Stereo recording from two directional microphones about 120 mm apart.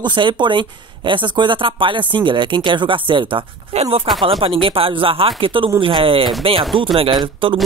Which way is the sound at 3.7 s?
60° right (ahead or behind).